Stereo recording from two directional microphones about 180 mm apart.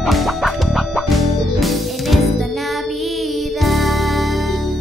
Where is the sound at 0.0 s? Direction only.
Centre (ahead or behind).